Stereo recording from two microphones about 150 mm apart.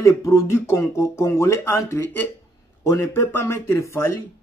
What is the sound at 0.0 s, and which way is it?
Speech, 20° left (ahead or behind).